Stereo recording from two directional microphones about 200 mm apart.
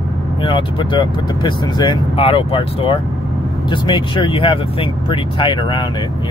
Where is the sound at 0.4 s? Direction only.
25° left (ahead or behind).